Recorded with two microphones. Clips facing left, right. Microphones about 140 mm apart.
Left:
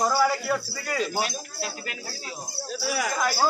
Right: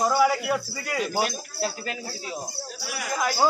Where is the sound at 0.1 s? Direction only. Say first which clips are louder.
Right 2 dB; 10° right (ahead or behind).